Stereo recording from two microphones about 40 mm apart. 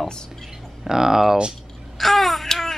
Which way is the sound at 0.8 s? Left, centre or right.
Centre.